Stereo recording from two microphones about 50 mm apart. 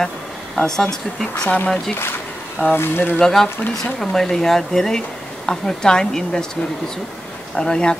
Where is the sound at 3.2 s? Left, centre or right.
Centre.